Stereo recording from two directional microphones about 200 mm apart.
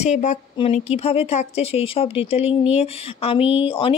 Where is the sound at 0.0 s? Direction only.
35° left (ahead or behind).